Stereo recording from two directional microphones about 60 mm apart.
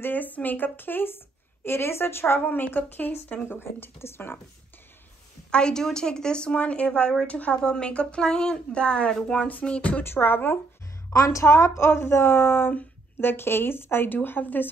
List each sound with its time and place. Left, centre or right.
0.0 s a woman's voice: left
5.5 s a woman's voice: centre
9.5 s music: left
10.0 s a woman's voice: left
11.1 s a woman's voice: left